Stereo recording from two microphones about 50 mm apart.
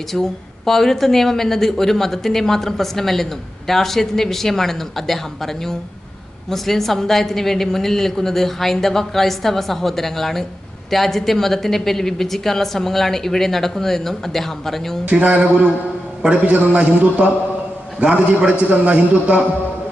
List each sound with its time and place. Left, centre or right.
0.1 s a woman's voice: centre
15.0 s a man's voice: right